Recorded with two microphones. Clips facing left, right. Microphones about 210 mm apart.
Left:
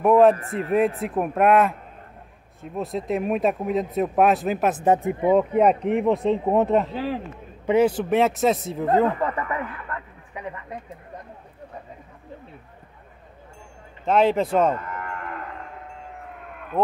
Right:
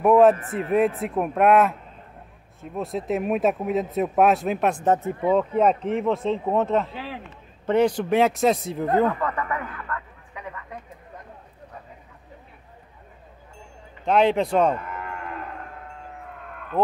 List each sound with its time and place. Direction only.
0.0 s speech: centre (ahead or behind); by 6.9 s 15° left (ahead or behind)
6.9 s a man's voice: 40° left (ahead or behind)
7.6 s speech: 5° left (ahead or behind)
8.8 s a man's voice: 30° left (ahead or behind)
14.0 s speech: 5° left (ahead or behind)
16.7 s speech: centre (ahead or behind)